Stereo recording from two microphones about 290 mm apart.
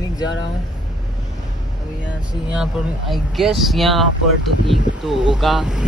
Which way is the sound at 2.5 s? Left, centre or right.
Centre.